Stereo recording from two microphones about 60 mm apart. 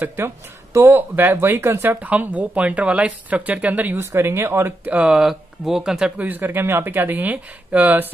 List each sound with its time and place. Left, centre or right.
0.0 s speech: right
4.0 s speech: right
4.8 s speech: right
5.1 s speech: centre
6.1 s speech: right